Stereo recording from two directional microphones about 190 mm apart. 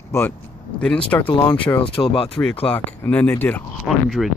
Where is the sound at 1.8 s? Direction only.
30° left (ahead or behind).